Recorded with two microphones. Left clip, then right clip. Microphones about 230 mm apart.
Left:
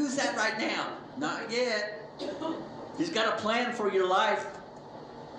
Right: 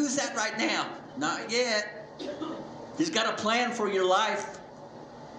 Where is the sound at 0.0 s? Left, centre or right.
Right.